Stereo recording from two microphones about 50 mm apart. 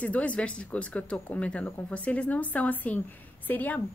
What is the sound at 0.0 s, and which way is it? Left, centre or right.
A woman's voice, left.